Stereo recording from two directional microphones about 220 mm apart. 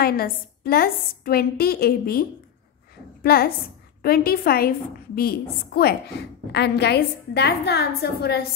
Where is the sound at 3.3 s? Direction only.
45° left (ahead or behind).